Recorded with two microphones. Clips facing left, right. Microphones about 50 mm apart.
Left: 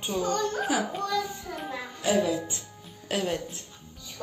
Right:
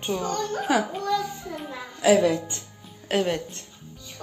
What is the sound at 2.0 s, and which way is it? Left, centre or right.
Music, right.